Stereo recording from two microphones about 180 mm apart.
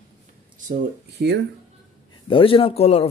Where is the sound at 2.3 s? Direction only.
30° left (ahead or behind).